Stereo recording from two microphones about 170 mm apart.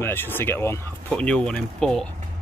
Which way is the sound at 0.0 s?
10° left (ahead or behind).